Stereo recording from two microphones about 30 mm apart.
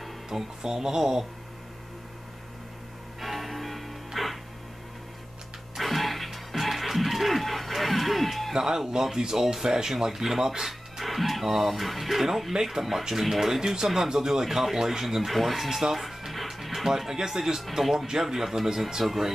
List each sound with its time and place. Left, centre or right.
0.3 s speech: centre
3.2 s music: centre
5.8 s music: centre
8.5 s speech: centre
15.3 s speech: centre
16.3 s music: centre
16.8 s speech: centre